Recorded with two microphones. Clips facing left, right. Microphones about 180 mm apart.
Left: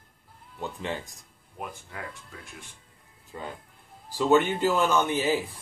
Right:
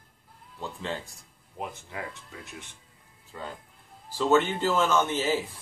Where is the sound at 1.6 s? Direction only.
20° right (ahead or behind).